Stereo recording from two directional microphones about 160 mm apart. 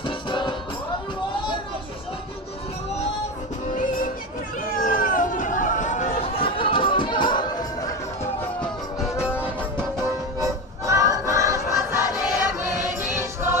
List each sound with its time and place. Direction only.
0.0 s music: 30° left (ahead or behind)
4.6 s chatter: 60° left (ahead or behind)
6.3 s music: 35° left (ahead or behind)
9.1 s music: 15° left (ahead or behind)
10.9 s choir: 20° right (ahead or behind)
13.1 s music: 15° right (ahead or behind)